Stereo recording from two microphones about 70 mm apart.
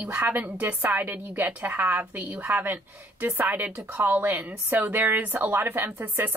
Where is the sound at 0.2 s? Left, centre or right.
Right.